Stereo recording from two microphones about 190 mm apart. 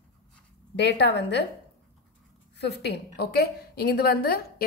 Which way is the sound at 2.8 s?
60° left (ahead or behind).